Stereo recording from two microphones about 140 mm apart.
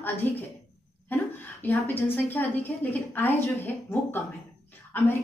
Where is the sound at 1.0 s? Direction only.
15° left (ahead or behind).